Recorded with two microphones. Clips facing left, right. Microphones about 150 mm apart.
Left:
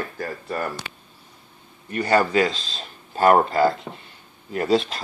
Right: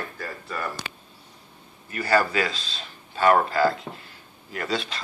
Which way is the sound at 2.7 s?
40° left (ahead or behind).